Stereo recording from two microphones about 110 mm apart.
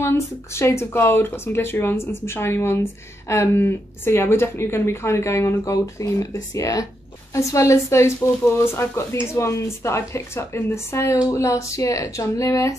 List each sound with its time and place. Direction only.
0.0 s speech: 25° left (ahead or behind)